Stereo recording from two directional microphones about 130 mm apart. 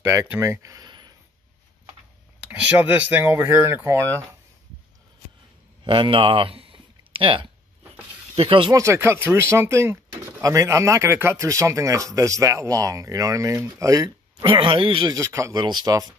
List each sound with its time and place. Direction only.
0.0 s speech: 20° right (ahead or behind)
2.4 s speech: 10° right (ahead or behind)
5.9 s speech: 40° right (ahead or behind)
8.7 s a man's voice: 20° right (ahead or behind)
14.4 s speech: 40° right (ahead or behind)
15.1 s a man's voice: 25° right (ahead or behind)